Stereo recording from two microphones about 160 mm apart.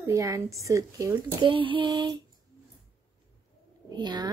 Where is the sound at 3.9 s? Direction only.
25° right (ahead or behind).